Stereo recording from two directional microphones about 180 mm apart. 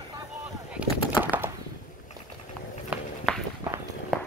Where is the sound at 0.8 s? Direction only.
10° right (ahead or behind).